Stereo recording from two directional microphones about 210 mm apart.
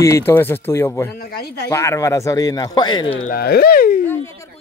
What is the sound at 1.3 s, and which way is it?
Speech, 50° left (ahead or behind).